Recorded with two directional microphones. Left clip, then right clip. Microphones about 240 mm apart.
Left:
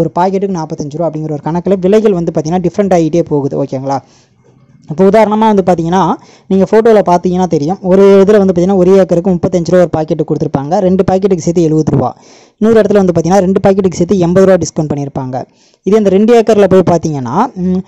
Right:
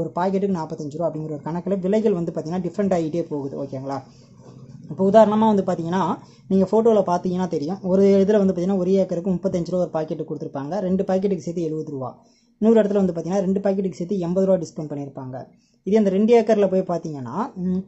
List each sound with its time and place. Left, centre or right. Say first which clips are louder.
0.0 s speech: left 11 dB; left